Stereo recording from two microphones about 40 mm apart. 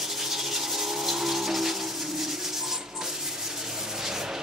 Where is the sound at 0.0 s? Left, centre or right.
Centre.